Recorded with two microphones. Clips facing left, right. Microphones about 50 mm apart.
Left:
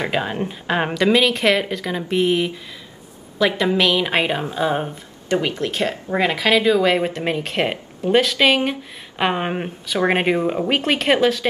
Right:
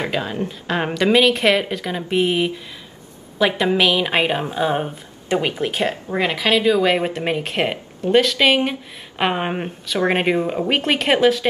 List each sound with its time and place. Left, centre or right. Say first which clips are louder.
0.1 s speech: left 1 dB; left
0.7 s a woman's voice: right 1 dB; centre
6.0 s speech: left 3 dB; centre